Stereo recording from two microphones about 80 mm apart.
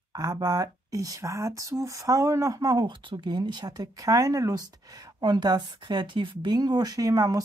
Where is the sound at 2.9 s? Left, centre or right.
Right.